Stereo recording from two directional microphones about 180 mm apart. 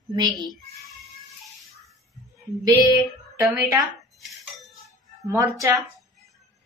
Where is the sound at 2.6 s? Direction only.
20° right (ahead or behind).